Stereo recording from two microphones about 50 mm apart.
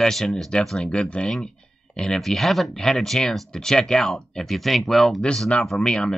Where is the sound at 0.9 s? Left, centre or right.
Left.